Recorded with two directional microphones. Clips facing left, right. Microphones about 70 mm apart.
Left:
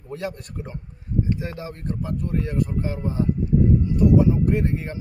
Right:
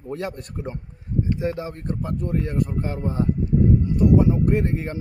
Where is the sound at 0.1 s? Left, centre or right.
Right.